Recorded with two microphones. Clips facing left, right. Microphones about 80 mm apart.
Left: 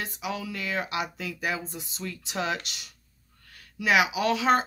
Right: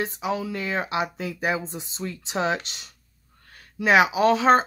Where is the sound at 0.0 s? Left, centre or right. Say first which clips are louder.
Right 6 dB; right.